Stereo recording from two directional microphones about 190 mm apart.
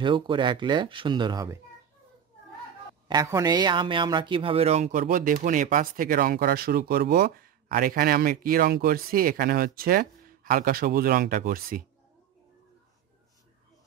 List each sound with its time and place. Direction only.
0.0 s speech: 25° right (ahead or behind)
3.1 s speech: 20° right (ahead or behind); by 11.8 s 45° right (ahead or behind)